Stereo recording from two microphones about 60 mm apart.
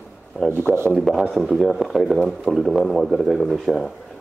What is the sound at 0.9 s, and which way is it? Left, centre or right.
Speech, centre.